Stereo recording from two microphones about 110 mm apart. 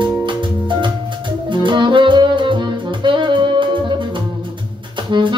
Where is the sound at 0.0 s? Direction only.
45° right (ahead or behind).